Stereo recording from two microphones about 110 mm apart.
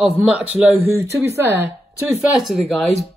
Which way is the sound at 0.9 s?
25° right (ahead or behind).